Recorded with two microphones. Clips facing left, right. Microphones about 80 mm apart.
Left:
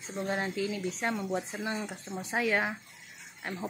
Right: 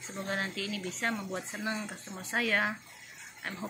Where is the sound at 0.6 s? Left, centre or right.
Centre.